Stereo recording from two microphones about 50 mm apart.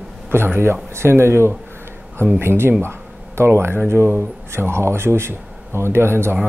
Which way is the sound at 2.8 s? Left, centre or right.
Right.